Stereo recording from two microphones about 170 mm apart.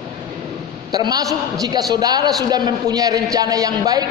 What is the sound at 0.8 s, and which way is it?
A man's voice, 20° right (ahead or behind).